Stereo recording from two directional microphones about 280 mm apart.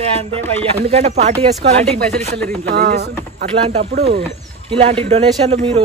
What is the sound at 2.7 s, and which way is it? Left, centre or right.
Speech, right.